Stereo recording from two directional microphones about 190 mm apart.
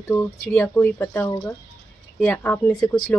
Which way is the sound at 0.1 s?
15° left (ahead or behind).